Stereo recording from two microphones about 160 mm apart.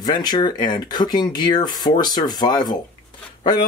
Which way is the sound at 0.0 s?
25° left (ahead or behind).